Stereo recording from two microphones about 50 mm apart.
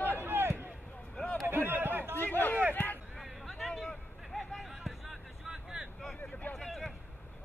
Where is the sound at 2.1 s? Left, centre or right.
Left.